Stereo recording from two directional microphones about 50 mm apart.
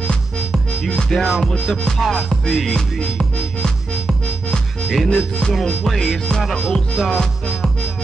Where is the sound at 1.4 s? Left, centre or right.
Centre.